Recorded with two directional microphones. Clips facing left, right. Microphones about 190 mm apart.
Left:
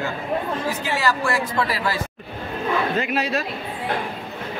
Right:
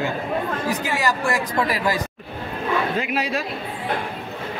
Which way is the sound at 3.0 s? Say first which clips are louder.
Left 1 dB; 10° right (ahead or behind).